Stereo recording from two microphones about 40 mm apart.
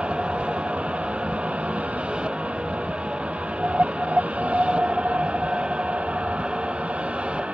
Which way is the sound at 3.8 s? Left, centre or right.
Right.